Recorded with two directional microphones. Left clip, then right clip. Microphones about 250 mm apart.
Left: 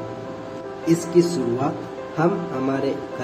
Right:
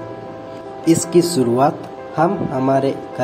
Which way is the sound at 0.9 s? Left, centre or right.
Right.